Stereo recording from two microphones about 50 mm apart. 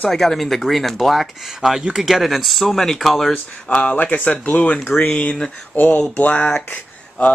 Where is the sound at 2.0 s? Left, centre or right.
Centre.